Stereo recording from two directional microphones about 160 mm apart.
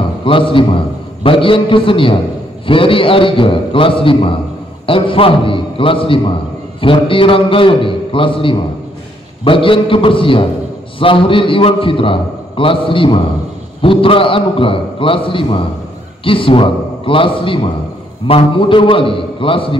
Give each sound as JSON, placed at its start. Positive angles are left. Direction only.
{"t": 0.2, "sound": "a man's voice", "side_deg": 35}